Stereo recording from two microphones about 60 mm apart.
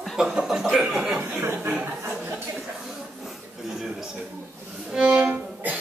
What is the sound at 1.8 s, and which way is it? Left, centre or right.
Chuckle, right.